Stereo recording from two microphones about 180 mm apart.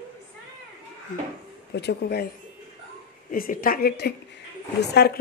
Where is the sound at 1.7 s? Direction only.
70° left (ahead or behind).